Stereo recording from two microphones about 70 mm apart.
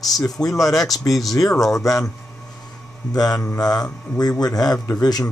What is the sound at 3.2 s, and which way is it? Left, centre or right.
Speech, left.